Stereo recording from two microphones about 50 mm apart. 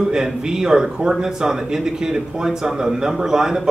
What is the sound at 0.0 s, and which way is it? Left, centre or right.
Speech, centre.